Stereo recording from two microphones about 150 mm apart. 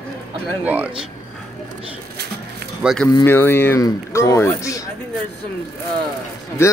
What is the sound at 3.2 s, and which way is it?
Speech, 15° left (ahead or behind).